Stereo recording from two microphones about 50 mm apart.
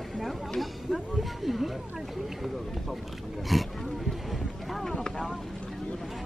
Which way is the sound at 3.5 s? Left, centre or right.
Centre.